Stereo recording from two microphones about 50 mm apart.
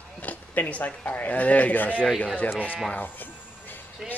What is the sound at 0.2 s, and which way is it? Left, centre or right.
Speech, left.